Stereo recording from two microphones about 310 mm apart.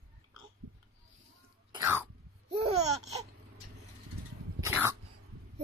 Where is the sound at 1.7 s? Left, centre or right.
Centre.